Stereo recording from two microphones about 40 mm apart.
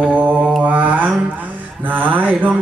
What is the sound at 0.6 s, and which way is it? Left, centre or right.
Mantra, right.